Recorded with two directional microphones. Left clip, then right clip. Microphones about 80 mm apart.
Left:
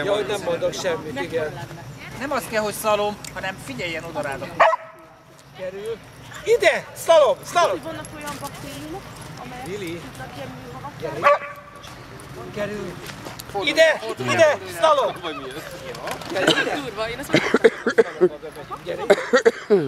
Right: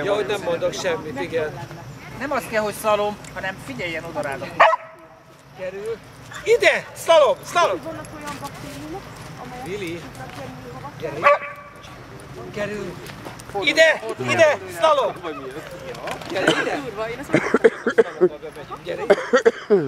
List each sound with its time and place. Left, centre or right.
0.0 s speech: centre
2.1 s speech: centre
4.4 s speech: centre
6.4 s speech: centre
9.7 s speech: centre
11.1 s speech: centre
12.5 s speech: centre
15.0 s speech: left
15.9 s speech: centre
16.7 s speech: left
17.3 s a sound: centre
18.9 s speech: centre
19.3 s speech: left